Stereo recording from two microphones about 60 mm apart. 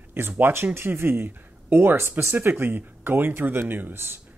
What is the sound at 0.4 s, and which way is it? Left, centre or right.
Speech, right.